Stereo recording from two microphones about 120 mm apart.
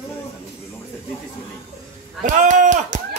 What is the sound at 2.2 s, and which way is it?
Speech, 90° right.